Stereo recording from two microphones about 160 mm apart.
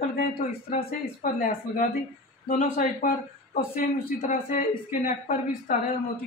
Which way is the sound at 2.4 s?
50° left (ahead or behind).